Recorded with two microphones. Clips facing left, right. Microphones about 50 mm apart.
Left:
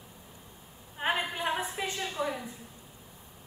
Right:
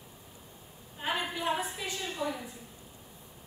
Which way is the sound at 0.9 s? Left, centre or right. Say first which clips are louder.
Left 3 dB; left.